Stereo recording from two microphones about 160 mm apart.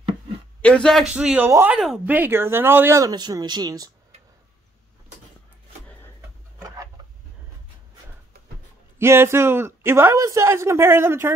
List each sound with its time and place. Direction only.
0.6 s a man's voice: 5° left (ahead or behind); by 3.9 s 25° right (ahead or behind)
8.9 s speech: 15° right (ahead or behind)